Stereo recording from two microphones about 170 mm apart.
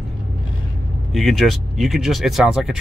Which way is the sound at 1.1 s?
Centre (ahead or behind).